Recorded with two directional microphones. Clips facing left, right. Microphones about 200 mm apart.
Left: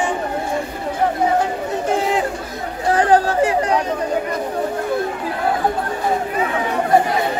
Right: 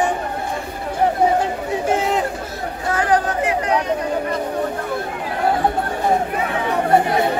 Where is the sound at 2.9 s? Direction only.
30° left (ahead or behind).